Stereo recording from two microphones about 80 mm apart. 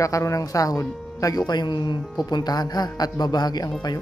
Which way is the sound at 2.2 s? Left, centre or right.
Left.